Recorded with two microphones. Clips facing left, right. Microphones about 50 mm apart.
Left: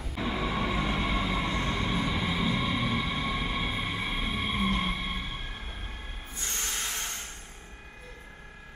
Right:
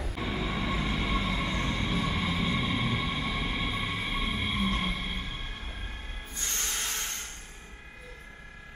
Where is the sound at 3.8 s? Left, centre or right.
Centre.